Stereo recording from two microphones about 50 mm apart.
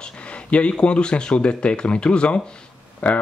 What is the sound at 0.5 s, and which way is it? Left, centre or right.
Speech, left.